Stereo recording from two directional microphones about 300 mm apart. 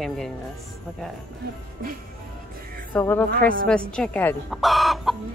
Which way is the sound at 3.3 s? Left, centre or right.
Right.